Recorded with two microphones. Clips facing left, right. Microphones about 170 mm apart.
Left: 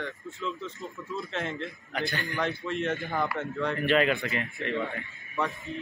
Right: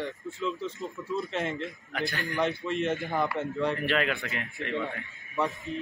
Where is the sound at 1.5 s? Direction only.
Centre (ahead or behind).